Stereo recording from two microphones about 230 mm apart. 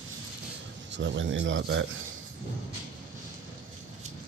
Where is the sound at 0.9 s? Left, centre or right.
Right.